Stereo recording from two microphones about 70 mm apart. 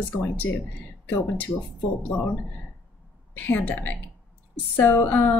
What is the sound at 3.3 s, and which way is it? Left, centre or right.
A woman's voice, left.